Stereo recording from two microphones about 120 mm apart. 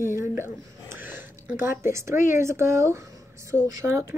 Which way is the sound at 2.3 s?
20° right (ahead or behind).